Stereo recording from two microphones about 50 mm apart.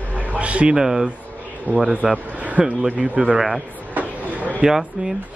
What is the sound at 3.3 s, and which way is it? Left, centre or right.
Speech, centre.